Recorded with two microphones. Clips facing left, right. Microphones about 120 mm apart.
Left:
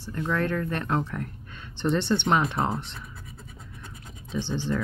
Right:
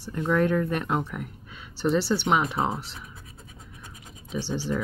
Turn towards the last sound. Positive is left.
turn(degrees=-10)  # may be behind; listen again after turning